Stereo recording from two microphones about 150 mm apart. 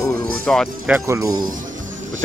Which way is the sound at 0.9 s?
20° right (ahead or behind).